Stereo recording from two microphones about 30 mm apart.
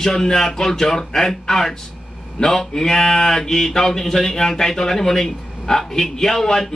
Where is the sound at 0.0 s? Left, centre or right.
Centre.